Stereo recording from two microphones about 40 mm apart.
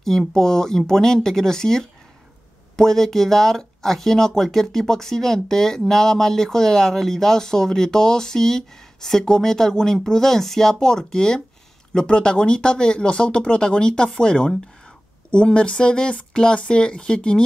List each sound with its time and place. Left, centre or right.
0.3 s speech: centre